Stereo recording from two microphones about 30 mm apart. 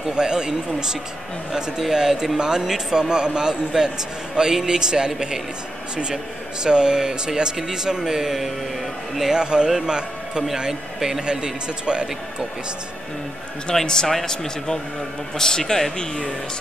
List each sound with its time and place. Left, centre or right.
0.1 s speech: right
1.5 s speech: centre
2.1 s speech: right
9.3 s a man's voice: right
10.7 s speech: centre
11.1 s speech: right
13.7 s speech: left